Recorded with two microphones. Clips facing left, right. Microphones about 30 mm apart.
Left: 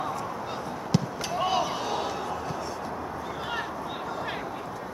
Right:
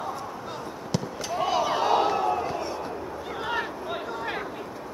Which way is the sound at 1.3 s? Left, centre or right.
Centre.